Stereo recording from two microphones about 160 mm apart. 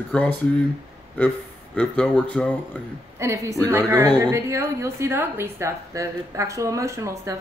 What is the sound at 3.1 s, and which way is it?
A woman's voice, 20° right (ahead or behind).